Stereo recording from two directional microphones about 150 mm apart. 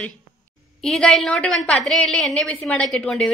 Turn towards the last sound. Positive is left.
turn(degrees=5)  # may be behind; listen again after turning